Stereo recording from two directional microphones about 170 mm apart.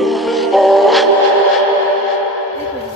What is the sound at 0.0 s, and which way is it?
Music, centre (ahead or behind).